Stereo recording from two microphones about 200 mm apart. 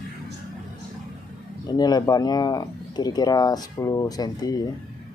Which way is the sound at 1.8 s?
20° left (ahead or behind).